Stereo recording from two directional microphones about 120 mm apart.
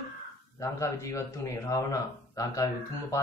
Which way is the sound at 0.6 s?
25° left (ahead or behind).